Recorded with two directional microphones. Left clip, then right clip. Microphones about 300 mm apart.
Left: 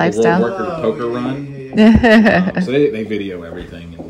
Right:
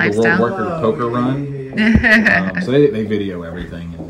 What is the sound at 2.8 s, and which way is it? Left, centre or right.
Speech, centre.